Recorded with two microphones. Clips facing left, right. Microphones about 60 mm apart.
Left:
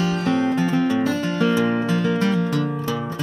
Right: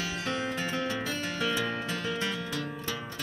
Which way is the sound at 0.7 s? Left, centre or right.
Left.